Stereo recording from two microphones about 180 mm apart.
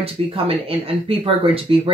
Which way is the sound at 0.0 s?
30° right (ahead or behind).